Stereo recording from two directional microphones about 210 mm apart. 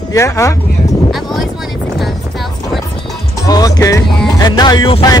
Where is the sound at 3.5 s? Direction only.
15° left (ahead or behind).